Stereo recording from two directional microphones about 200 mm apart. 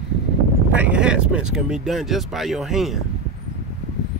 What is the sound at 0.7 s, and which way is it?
Speech, 5° right (ahead or behind).